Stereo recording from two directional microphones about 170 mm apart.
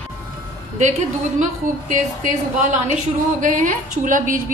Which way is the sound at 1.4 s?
50° right (ahead or behind).